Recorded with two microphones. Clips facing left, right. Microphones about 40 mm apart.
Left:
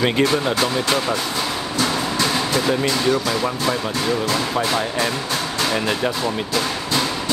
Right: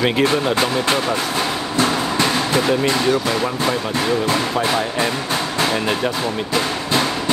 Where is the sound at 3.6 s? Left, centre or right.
Centre.